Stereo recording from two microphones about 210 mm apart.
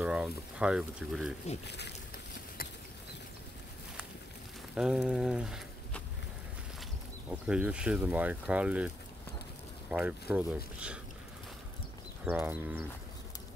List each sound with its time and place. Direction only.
0.0 s speech: 5° right (ahead or behind)
1.7 s speech: 55° left (ahead or behind)
4.7 s speech: 5° right (ahead or behind)
7.2 s speech: 5° right (ahead or behind)
12.3 s speech: 10° right (ahead or behind)